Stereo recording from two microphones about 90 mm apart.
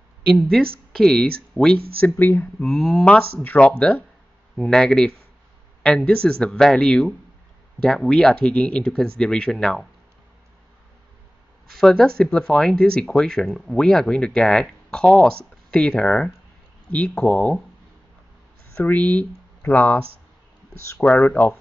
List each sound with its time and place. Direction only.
0.3 s speech: 5° left (ahead or behind)
2.1 s speech: 20° left (ahead or behind)
2.6 s speech: centre (ahead or behind)
3.1 s speech: 10° left (ahead or behind)
11.8 s speech: 5° left (ahead or behind)
18.8 s speech: 15° left (ahead or behind)
21.0 s speech: 15° left (ahead or behind)